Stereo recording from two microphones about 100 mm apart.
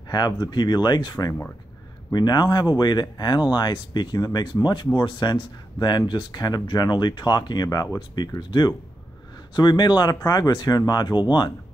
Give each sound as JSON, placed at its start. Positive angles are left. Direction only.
{"t": 0.1, "sound": "speech", "side_deg": 45}